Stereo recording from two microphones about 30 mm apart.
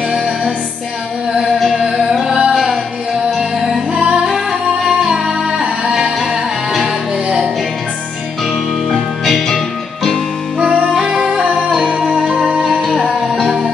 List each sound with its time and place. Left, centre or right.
2.5 s music: centre
3.9 s music: right
4.3 s music: centre
8.9 s music: centre
10.6 s music: right
10.9 s music: right
11.7 s music: centre
13.4 s music: centre